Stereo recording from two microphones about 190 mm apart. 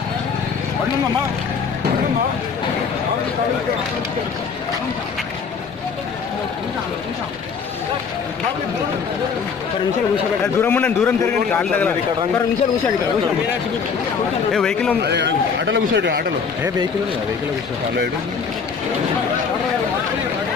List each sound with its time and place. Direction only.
10.4 s a man's voice: 10° left (ahead or behind)
14.5 s speech: 5° left (ahead or behind)
15.0 s a man's voice: 65° right (ahead or behind)